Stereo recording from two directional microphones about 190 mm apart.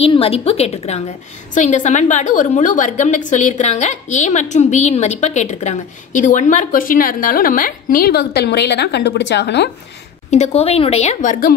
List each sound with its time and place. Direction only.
0.0 s a woman's voice: 30° left (ahead or behind); by 9.7 s 65° left (ahead or behind)
10.3 s a woman's voice: 35° left (ahead or behind)